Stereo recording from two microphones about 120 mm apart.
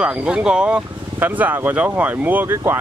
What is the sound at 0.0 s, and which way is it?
Speech, 10° right (ahead or behind).